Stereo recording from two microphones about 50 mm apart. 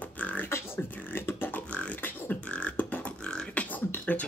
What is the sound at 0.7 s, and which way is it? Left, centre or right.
Beatboxing, left.